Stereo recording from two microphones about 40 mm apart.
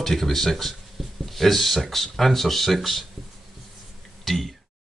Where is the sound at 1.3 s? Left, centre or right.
Centre.